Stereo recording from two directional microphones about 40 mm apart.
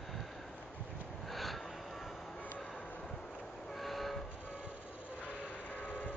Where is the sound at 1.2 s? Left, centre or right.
Centre.